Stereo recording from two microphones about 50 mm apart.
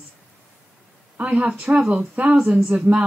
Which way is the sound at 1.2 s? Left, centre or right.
Right.